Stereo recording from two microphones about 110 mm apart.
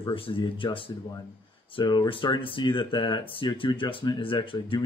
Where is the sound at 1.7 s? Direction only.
40° left (ahead or behind).